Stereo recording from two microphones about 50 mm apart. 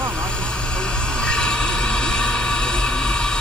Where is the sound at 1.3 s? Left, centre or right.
Centre.